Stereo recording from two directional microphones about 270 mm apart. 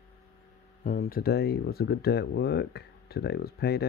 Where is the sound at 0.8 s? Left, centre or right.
Left.